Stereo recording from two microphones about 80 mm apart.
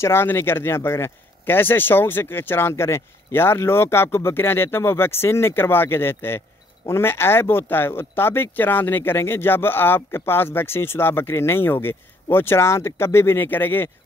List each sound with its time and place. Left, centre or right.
0.0 s speech: left